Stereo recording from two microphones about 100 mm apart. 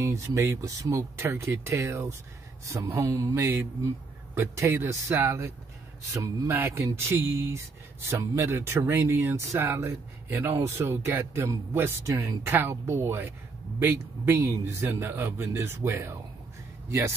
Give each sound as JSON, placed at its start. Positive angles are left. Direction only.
{"t": 0.0, "sound": "speech", "side_deg": -30}